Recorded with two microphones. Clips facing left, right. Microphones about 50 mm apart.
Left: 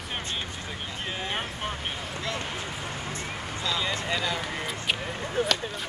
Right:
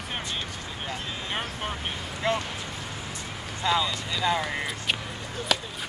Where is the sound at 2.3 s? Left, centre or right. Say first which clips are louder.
Right 8 dB; right.